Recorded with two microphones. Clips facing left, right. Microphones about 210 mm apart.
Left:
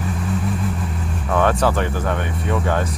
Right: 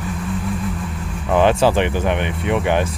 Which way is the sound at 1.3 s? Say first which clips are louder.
Right 3 dB; 25° right (ahead or behind).